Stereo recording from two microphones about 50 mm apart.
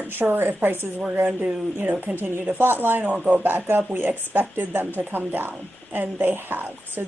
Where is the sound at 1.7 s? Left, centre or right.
Right.